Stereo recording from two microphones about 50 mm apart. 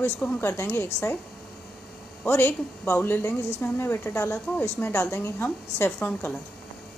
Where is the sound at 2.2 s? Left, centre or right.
Left.